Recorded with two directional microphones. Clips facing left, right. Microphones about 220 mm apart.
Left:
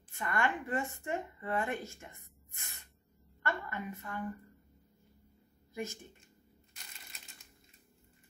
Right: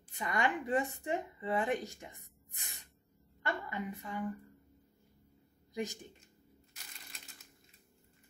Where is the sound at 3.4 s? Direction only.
15° right (ahead or behind).